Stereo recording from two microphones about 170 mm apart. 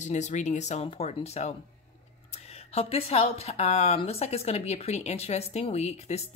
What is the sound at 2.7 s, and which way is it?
A woman's voice, 35° left (ahead or behind).